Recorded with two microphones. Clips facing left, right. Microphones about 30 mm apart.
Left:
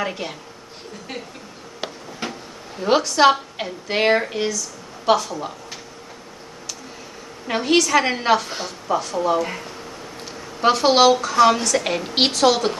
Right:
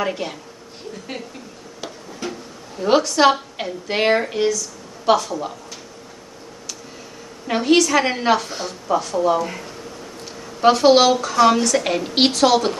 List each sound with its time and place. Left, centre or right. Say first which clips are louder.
0.0 s a woman's voice: right 2 dB; centre
2.2 s a sound: right 1 dB; left
2.8 s a woman's voice: right 1 dB; centre
7.4 s a woman's voice: right 2 dB; centre